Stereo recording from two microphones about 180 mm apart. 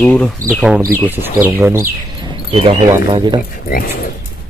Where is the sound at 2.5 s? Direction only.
30° right (ahead or behind).